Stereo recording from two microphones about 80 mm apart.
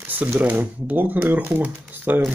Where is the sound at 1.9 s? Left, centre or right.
Right.